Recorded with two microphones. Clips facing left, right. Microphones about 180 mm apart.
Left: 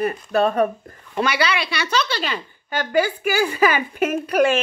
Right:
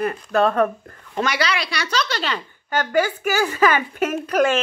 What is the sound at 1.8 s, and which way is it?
A woman's voice, 15° left (ahead or behind).